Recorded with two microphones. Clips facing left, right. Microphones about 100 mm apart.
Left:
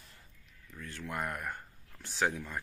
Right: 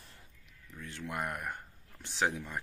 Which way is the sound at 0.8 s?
20° right (ahead or behind).